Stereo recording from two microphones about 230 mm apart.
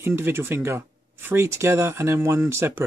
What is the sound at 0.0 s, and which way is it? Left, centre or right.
Speech, centre.